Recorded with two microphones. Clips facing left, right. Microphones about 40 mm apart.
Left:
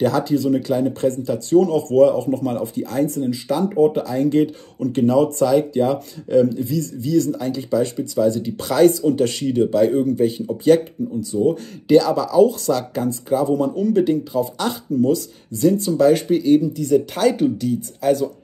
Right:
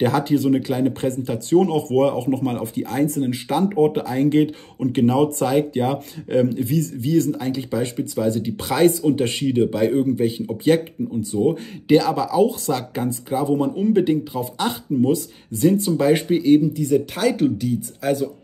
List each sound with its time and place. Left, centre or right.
0.0 s speech: right
0.6 s speech: right
11.1 s speech: right
11.9 s speech: right
16.4 s speech: centre